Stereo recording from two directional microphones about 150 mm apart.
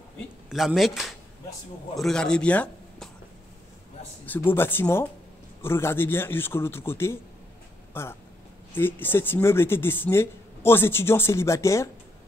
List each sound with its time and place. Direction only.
0.5 s speech: centre (ahead or behind)
4.3 s speech: 15° left (ahead or behind)